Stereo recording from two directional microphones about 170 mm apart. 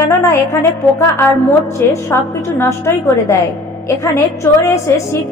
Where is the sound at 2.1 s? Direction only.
15° left (ahead or behind).